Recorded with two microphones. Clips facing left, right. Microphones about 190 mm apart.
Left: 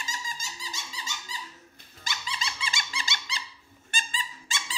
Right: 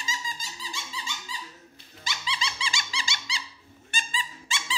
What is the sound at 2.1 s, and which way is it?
Music, 50° left (ahead or behind).